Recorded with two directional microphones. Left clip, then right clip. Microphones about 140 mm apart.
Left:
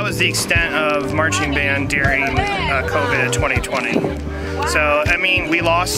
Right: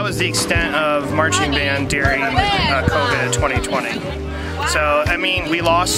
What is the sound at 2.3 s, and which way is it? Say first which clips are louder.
Speech: right 3 dB; 40° right (ahead or behind).